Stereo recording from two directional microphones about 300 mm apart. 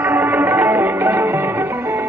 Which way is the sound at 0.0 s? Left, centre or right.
Centre.